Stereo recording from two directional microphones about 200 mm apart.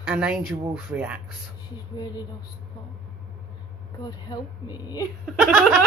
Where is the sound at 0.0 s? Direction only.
5° right (ahead or behind).